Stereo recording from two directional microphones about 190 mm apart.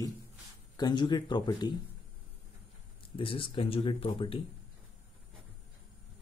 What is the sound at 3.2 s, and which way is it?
Speech, 30° left (ahead or behind).